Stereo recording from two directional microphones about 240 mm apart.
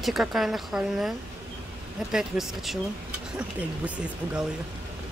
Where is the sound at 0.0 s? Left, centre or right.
Centre.